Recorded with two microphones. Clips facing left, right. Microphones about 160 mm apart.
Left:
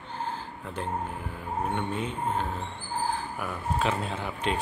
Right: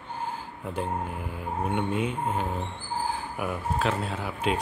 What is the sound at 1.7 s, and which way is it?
A man's voice, 10° right (ahead or behind).